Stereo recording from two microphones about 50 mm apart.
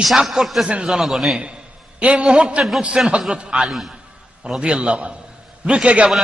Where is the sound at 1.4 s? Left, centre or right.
Right.